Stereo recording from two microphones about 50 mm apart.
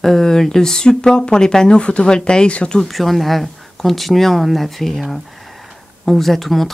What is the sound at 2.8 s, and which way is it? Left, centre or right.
Speech, centre.